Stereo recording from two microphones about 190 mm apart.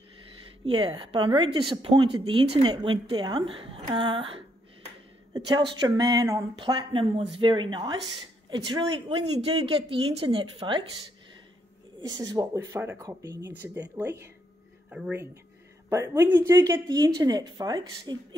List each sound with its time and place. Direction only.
0.7 s speech: 25° right (ahead or behind)
12.0 s speech: 20° right (ahead or behind)
14.9 s speech: 5° right (ahead or behind); by 18.1 s 20° right (ahead or behind)